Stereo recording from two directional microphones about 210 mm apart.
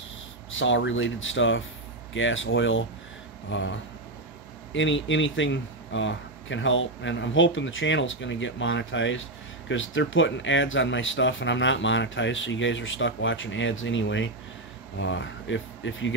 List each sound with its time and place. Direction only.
0.5 s speech: 65° left (ahead or behind)
4.7 s speech: 60° left (ahead or behind)